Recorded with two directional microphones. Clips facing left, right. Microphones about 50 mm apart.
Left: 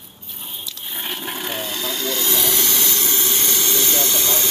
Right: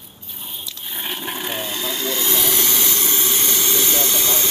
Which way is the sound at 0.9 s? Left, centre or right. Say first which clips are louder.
Right 1 dB; centre.